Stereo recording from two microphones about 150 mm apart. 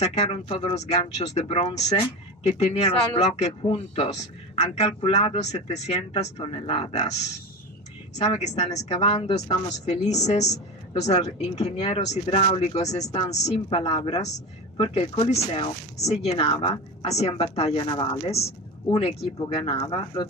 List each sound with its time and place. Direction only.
0.0 s speech: 45° left (ahead or behind)
8.2 s speech: 45° left (ahead or behind)